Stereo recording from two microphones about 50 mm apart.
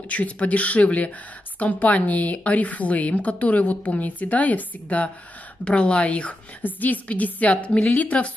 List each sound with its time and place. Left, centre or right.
0.1 s a woman's voice: left